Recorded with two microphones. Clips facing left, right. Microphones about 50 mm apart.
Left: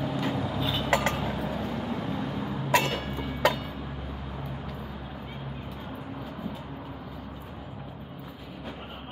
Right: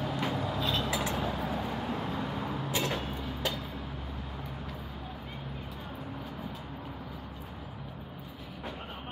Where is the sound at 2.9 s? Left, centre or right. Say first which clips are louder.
Left 3 dB; left.